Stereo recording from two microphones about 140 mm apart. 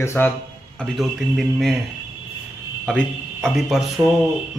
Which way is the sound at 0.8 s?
Centre (ahead or behind).